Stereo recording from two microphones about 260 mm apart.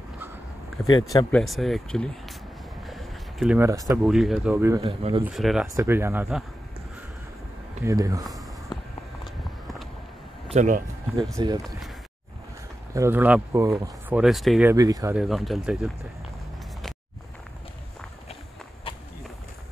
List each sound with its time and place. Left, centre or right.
0.8 s speech: centre
1.4 s speech: centre
4.8 s speech: right
5.2 s speech: centre
7.8 s speech: centre
8.7 s a sound: centre
9.2 s a sound: centre
10.5 s speech: right
11.3 s speech: centre
12.9 s speech: centre
18.9 s run: centre